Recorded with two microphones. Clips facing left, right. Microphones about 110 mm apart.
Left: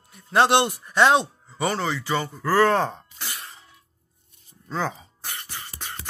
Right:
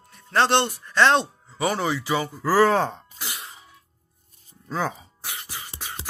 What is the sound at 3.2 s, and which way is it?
Cough, 15° right (ahead or behind).